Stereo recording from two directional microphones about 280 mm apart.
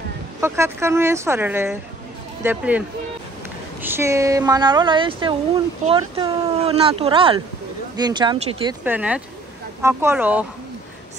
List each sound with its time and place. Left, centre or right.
0.4 s speech: centre
3.8 s speech: centre